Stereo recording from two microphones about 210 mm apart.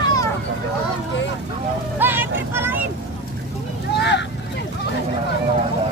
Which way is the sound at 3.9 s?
55° left (ahead or behind).